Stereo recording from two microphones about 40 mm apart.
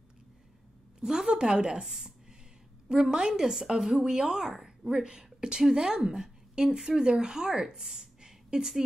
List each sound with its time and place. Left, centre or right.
1.0 s a woman's voice: centre
3.0 s a woman's voice: right
7.8 s a sound: centre